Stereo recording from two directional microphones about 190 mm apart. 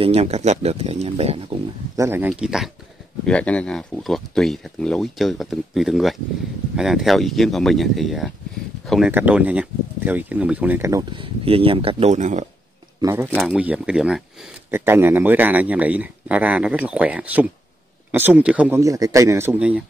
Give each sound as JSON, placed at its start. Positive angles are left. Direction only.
{"t": 0.0, "sound": "speech", "side_deg": -30}
{"t": 2.0, "sound": "speech", "side_deg": -10}
{"t": 13.0, "sound": "speech", "side_deg": -15}
{"t": 13.3, "sound": "speech", "side_deg": 0}
{"t": 18.8, "sound": "speech", "side_deg": -20}